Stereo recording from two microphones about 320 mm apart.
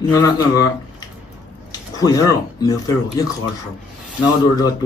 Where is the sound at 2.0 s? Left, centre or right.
Centre.